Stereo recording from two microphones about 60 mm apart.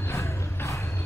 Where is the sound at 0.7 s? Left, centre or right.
Left.